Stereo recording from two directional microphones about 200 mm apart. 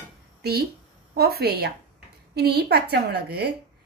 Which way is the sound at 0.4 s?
55° right (ahead or behind).